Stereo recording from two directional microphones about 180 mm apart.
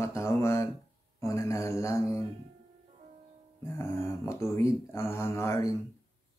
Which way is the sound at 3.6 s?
15° left (ahead or behind).